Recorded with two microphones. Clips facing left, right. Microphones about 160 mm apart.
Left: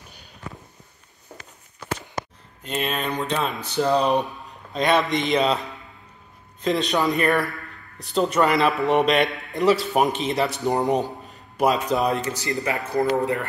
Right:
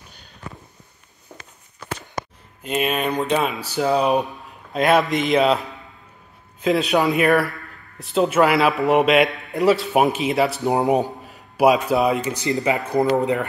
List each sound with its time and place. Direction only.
2.6 s speech: 10° right (ahead or behind)
10.8 s speech: 15° right (ahead or behind)
11.2 s a sound: 10° right (ahead or behind)
12.0 s speech: 5° right (ahead or behind)